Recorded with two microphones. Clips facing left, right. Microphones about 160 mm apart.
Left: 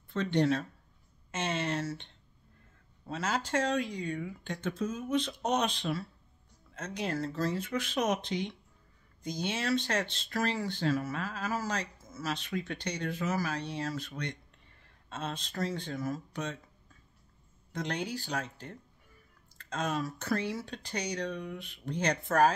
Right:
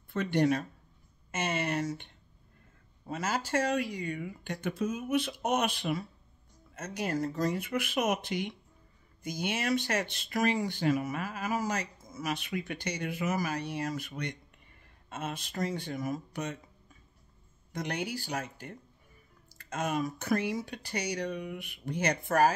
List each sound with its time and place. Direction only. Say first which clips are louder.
0.1 s speech: right 1 dB; 10° right (ahead or behind)
3.1 s speech: right 1 dB; 5° right (ahead or behind)
17.7 s speech: even; 10° right (ahead or behind)